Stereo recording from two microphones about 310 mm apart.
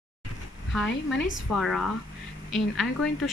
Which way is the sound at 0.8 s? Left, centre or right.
Left.